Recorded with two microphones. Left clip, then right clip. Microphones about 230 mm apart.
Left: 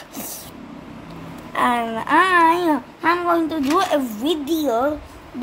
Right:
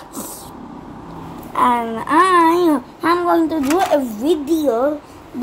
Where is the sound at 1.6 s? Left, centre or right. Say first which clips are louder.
Right 3 dB; left.